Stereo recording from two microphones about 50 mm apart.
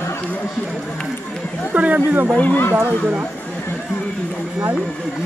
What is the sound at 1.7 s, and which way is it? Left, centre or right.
Speech, right.